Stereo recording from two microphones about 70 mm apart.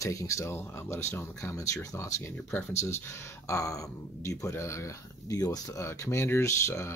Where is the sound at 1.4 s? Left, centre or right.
Left.